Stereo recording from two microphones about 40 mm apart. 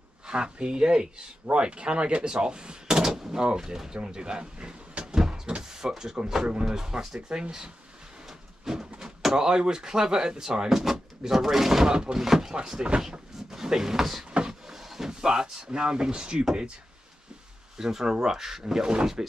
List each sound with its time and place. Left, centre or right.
0.3 s speech: right
4.0 s a sound: right
5.6 s speech: centre
7.2 s speech: right
8.3 s a sound: centre
9.0 s speech: centre
11.9 s speech: right
14.5 s a sound: centre
17.7 s speech: centre